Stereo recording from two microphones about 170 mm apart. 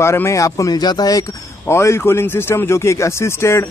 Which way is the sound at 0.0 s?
15° left (ahead or behind).